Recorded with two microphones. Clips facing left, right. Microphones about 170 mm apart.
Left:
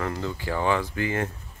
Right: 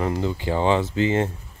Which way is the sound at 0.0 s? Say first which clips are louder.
Right 5 dB; 20° right (ahead or behind).